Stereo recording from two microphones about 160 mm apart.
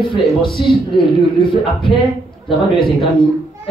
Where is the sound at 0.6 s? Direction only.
Centre (ahead or behind).